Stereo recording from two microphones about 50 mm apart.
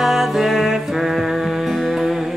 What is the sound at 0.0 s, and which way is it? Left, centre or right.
Music, centre.